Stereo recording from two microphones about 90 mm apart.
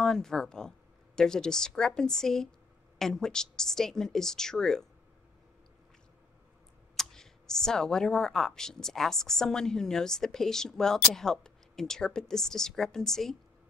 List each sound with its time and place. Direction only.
0.0 s speech: 5° left (ahead or behind)
7.0 s speech: 5° left (ahead or behind)